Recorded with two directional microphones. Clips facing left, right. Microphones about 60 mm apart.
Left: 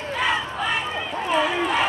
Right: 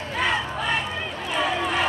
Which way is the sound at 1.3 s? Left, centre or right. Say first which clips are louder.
Left 3 dB; centre.